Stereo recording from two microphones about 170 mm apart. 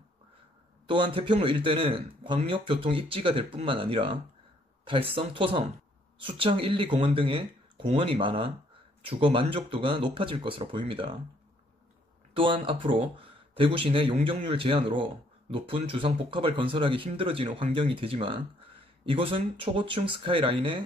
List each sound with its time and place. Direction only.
0.8 s speech: 30° right (ahead or behind)
12.4 s speech: 30° right (ahead or behind)